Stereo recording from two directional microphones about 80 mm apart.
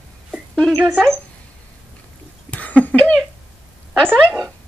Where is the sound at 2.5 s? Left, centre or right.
Centre.